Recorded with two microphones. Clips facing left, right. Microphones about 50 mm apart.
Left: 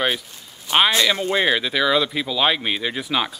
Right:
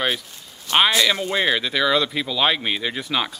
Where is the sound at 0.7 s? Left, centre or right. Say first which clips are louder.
Even; centre.